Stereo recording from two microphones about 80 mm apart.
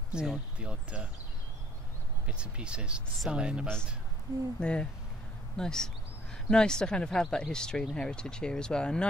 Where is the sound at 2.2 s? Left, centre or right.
Centre.